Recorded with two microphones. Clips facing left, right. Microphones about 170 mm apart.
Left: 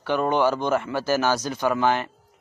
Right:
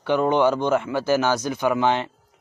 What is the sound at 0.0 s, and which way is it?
Speech, 15° right (ahead or behind).